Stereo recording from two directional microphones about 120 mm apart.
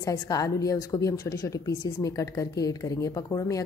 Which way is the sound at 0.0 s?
30° left (ahead or behind).